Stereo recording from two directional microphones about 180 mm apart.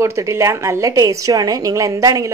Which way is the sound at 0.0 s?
15° right (ahead or behind).